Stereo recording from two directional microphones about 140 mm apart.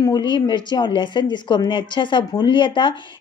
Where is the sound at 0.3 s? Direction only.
35° left (ahead or behind).